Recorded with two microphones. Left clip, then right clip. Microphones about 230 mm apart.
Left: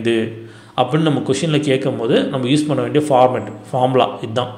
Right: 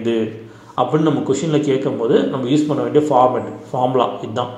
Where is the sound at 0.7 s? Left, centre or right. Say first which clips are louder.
Even; left.